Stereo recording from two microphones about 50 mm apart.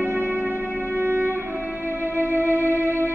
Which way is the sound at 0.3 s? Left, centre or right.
Right.